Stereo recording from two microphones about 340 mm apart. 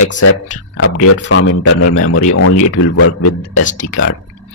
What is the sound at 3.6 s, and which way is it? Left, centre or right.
Speech, left.